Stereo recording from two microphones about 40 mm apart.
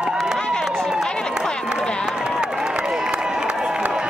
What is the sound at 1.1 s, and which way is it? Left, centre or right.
Run, left.